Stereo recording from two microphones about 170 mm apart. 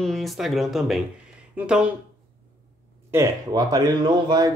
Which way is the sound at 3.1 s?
20° right (ahead or behind).